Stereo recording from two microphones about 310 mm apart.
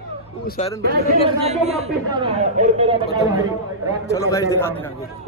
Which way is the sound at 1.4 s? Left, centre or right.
Right.